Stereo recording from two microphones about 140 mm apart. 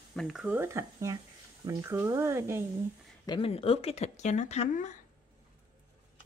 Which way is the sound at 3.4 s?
45° left (ahead or behind).